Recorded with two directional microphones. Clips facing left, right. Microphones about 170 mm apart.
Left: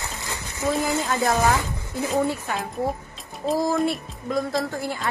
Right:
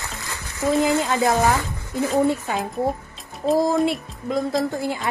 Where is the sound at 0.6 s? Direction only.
20° right (ahead or behind).